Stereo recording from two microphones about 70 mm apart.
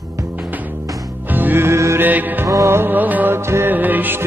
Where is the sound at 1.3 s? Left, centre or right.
Right.